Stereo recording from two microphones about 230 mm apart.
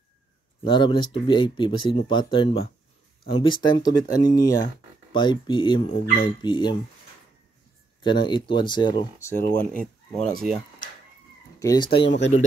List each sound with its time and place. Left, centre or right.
0.7 s speech: left
8.0 s speech: centre
9.8 s speech: centre
11.6 s speech: centre
12.1 s speech: left